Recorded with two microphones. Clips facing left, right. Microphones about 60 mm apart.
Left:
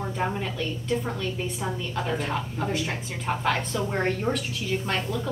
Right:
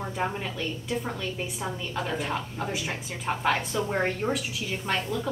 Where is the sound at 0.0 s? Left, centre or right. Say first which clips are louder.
Left 2 dB; centre.